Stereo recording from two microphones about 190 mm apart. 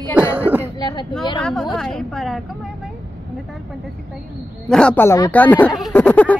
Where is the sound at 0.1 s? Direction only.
10° right (ahead or behind).